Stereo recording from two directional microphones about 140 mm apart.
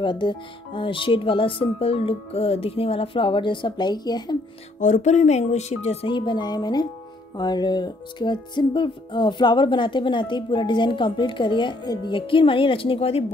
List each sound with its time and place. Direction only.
0.0 s music: 35° left (ahead or behind)
4.7 s speech: 60° left (ahead or behind); by 6.9 s 30° left (ahead or behind)
7.3 s music: 30° left (ahead or behind)